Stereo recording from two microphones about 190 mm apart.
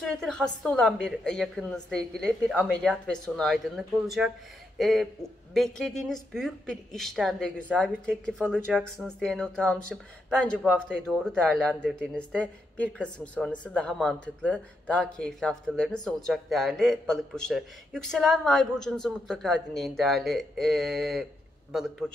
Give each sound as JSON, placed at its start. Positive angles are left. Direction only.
{"t": 0.0, "sound": "a man's voice", "side_deg": 5}